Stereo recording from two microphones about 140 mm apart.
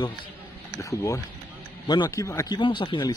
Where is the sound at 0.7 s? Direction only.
20° left (ahead or behind).